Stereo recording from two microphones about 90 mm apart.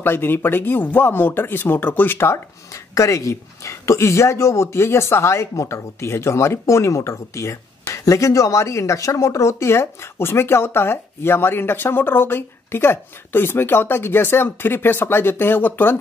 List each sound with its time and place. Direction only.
0.0 s speech: 25° left (ahead or behind)